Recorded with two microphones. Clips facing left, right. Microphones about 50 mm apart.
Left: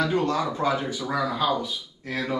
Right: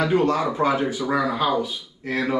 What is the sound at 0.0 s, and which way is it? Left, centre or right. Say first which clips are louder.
Speech: right 4 dB; centre.